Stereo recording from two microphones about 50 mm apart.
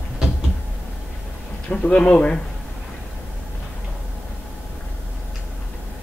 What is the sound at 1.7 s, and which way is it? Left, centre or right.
Speech, left.